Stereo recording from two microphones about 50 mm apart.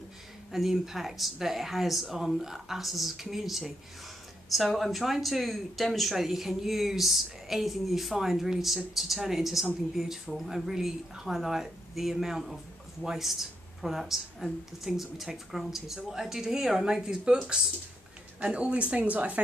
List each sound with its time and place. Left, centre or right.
0.5 s speech: centre
18.4 s speech: right